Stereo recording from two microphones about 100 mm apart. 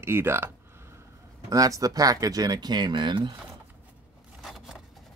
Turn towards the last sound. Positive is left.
turn(degrees=0)  # may be behind; listen again after turning